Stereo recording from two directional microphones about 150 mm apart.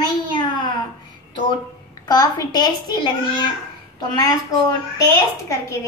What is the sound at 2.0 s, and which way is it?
Speech, 25° left (ahead or behind).